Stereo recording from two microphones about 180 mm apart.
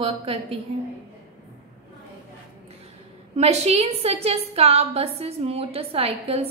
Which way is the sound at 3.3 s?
35° right (ahead or behind).